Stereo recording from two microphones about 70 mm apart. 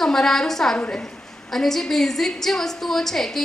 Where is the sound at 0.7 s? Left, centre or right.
Centre.